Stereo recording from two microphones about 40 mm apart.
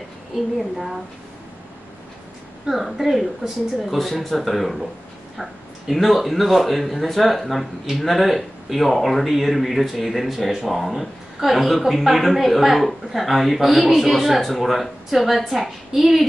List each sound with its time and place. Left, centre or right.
2.6 s speech: centre